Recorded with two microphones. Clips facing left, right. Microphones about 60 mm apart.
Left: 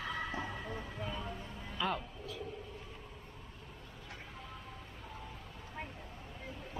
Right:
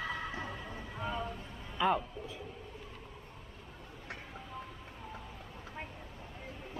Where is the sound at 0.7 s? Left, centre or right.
Centre.